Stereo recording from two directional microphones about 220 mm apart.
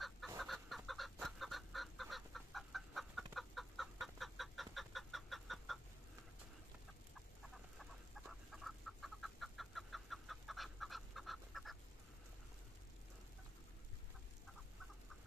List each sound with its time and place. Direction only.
0.4 s chicken: centre (ahead or behind)
7.5 s chicken: centre (ahead or behind)